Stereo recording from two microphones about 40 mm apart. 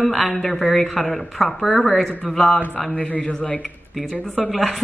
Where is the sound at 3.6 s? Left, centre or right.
Centre.